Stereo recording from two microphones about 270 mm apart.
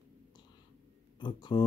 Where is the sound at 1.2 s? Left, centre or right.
Centre.